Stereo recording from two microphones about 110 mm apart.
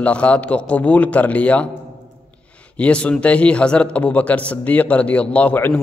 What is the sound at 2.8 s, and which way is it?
A man's voice, 10° left (ahead or behind).